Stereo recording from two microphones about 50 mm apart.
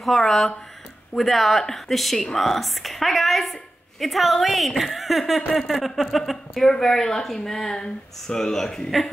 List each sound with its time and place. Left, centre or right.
0.0 s a woman's voice: centre